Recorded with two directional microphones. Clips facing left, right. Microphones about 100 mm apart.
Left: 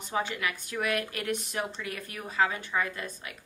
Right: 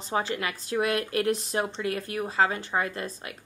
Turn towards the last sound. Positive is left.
turn(degrees=-35)  # may be behind; listen again after turning